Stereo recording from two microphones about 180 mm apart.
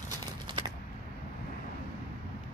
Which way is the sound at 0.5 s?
25° right (ahead or behind).